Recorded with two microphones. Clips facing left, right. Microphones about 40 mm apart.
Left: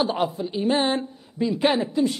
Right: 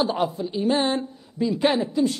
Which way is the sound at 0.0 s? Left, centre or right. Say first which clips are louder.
Even; centre.